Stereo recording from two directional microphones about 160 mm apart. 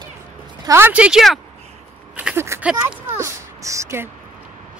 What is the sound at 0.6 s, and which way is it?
Speech, 15° right (ahead or behind).